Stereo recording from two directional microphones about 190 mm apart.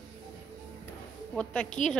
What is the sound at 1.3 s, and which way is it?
Speech, 5° left (ahead or behind).